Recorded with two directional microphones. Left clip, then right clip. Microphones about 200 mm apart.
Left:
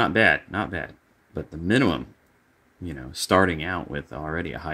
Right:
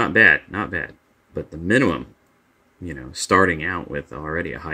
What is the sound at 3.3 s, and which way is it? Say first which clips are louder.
Speech: right 4 dB; 10° left (ahead or behind).